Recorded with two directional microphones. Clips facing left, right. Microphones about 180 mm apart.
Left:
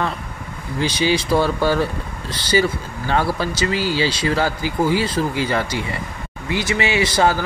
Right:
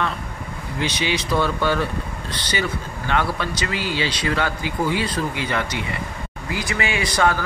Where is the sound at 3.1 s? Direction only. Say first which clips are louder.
Left 3 dB; 35° left (ahead or behind).